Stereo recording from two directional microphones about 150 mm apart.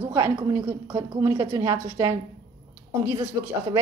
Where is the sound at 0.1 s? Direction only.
20° right (ahead or behind).